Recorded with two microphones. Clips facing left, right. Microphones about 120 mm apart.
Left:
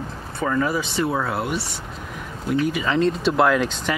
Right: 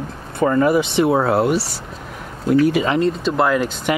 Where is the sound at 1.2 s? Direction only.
40° right (ahead or behind).